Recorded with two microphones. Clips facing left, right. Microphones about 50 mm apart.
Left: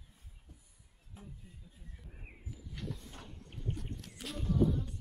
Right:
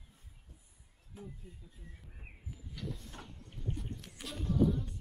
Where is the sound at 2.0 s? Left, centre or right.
Centre.